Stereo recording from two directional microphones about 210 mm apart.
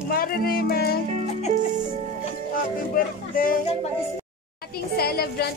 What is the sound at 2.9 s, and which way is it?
Speech, 40° left (ahead or behind).